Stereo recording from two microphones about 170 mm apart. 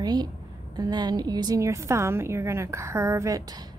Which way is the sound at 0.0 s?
25° right (ahead or behind).